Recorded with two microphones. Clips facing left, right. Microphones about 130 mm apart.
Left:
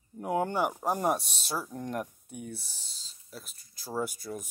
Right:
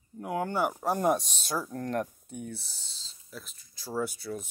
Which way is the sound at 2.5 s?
35° left (ahead or behind).